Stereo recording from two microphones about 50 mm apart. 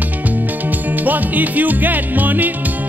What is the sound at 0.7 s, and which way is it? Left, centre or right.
Music, right.